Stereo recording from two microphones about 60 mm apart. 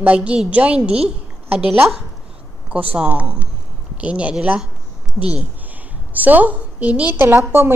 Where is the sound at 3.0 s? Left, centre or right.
Right.